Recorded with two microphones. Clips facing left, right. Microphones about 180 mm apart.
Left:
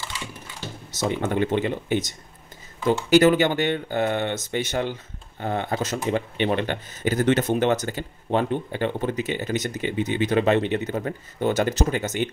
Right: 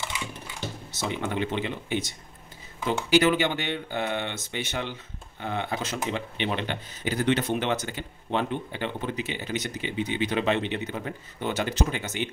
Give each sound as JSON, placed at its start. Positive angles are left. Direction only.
{"t": 0.9, "sound": "speech", "side_deg": 45}